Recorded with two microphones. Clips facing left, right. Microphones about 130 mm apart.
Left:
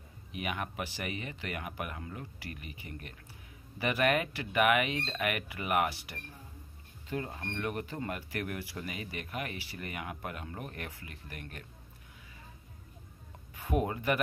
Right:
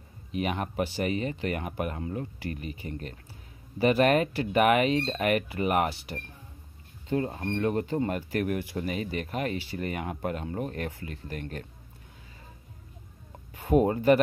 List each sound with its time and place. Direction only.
0.3 s speech: 30° right (ahead or behind)
13.6 s speech: 25° right (ahead or behind)